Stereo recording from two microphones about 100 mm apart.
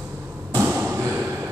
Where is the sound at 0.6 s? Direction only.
20° right (ahead or behind).